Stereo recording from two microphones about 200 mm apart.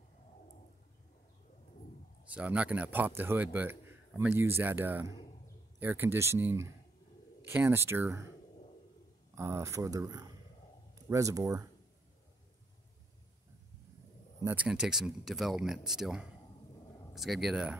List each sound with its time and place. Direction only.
2.2 s speech: 5° right (ahead or behind)
9.3 s speech: 15° right (ahead or behind)
14.4 s speech: 10° right (ahead or behind)